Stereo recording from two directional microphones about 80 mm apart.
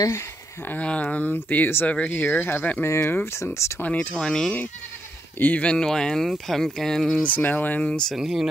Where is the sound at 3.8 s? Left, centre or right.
Centre.